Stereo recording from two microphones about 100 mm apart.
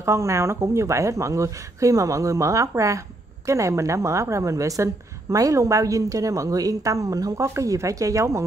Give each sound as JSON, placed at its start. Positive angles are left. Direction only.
{"t": 0.0, "sound": "a woman's voice", "side_deg": -30}